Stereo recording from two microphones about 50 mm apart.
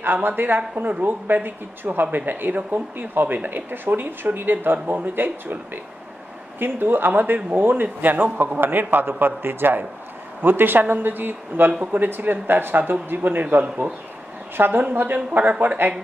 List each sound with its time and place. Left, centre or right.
0.0 s a man's voice: right
15.1 s speech: right